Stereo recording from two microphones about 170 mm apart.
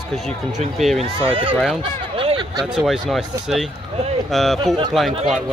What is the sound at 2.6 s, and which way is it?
Speech, centre (ahead or behind).